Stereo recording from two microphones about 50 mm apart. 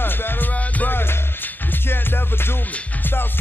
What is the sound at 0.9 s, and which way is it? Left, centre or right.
Music, left.